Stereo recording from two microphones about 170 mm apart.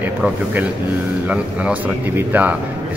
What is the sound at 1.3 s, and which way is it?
A man's voice, 10° right (ahead or behind).